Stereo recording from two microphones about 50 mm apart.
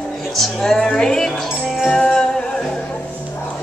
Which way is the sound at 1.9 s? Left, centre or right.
Centre.